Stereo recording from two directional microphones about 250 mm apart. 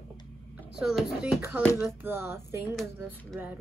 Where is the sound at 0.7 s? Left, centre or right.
Centre.